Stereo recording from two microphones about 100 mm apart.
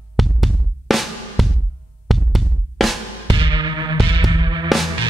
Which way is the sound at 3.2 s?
55° right (ahead or behind).